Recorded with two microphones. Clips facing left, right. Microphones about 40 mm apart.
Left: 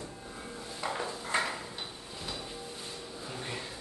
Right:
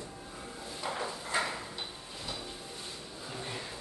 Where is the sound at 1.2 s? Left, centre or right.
Left.